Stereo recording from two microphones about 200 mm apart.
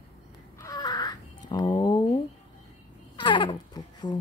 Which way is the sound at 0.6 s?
20° left (ahead or behind).